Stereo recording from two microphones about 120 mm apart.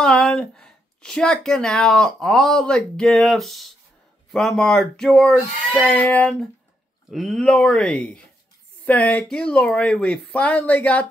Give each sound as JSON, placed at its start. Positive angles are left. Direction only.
{"t": 0.0, "sound": "speech", "side_deg": 5}